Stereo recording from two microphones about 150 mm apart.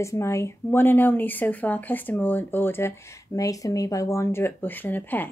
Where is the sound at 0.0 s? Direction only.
20° left (ahead or behind).